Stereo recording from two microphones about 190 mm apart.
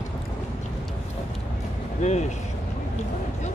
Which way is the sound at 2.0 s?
35° left (ahead or behind).